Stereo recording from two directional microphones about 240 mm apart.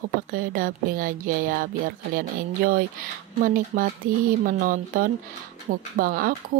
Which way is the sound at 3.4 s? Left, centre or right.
Right.